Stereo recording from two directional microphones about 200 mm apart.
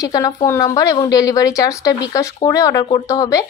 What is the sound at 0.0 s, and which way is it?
A woman's voice, 15° left (ahead or behind).